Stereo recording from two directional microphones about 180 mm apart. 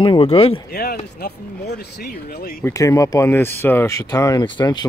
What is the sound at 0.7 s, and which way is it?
Speech, 60° left (ahead or behind).